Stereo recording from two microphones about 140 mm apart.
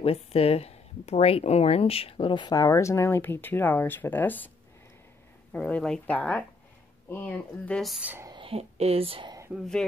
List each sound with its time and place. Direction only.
0.0 s speech: 45° left (ahead or behind); by 4.5 s 15° left (ahead or behind)
5.5 s speech: 10° left (ahead or behind)
8.0 s speech: 15° right (ahead or behind)
8.3 s speech: 40° right (ahead or behind)